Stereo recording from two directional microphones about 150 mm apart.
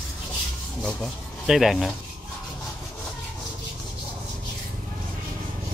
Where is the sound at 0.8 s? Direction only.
Centre (ahead or behind).